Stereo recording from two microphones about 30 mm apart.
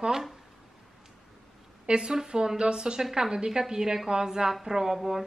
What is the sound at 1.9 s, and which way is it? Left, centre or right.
A woman's voice, right.